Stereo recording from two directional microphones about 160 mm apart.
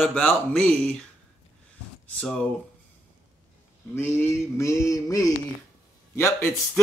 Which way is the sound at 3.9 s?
15° left (ahead or behind).